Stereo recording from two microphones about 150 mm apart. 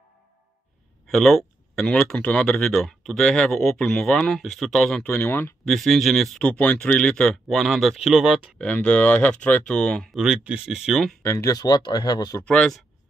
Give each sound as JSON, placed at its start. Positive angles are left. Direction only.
{"t": 1.0, "sound": "speech", "side_deg": 0}
{"t": 5.7, "sound": "speech", "side_deg": 0}
{"t": 8.5, "sound": "speech", "side_deg": 10}
{"t": 11.2, "sound": "speech", "side_deg": 20}
{"t": 12.4, "sound": "speech", "side_deg": 5}